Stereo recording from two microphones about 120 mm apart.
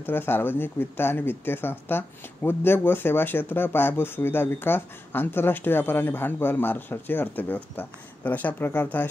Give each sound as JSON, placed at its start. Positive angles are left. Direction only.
{"t": 0.0, "sound": "speech", "side_deg": 15}